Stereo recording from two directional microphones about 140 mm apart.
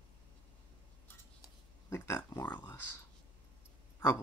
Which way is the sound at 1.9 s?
15° left (ahead or behind).